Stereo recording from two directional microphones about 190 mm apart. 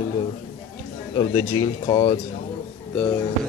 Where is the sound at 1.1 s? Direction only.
25° left (ahead or behind).